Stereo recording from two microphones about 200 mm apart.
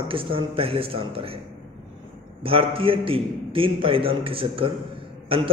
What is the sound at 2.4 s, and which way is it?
A man's voice, 25° right (ahead or behind).